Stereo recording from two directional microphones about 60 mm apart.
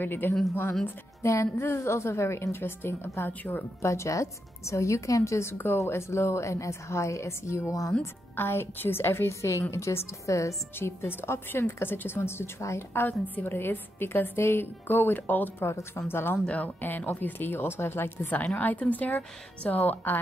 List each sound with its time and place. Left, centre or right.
0.0 s a woman's voice: left
1.2 s a woman's voice: left
3.8 s a woman's voice: left
8.4 s a woman's voice: left
10.8 s a woman's voice: left
13.0 s a woman's voice: left
15.6 s a woman's voice: left
16.4 s a woman's voice: left